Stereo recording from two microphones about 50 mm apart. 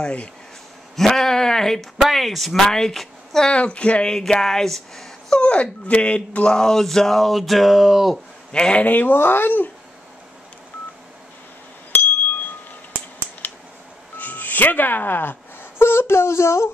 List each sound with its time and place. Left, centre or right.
0.9 s speech: centre
3.4 s speech: left
4.4 s speech: centre
5.4 s speech: left; by 8.1 s centre
8.5 s speech: centre
8.8 s speech: left
14.1 s a sound: left
15.8 s speech: left